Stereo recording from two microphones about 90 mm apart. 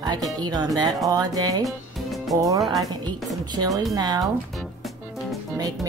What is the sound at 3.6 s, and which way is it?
Music, 50° right (ahead or behind).